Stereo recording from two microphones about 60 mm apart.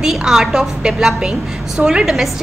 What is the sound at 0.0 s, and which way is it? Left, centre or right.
A woman's voice, centre.